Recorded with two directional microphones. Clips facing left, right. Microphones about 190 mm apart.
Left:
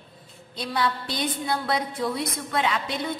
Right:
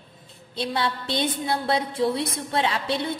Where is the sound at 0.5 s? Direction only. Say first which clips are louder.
Even; 25° right (ahead or behind).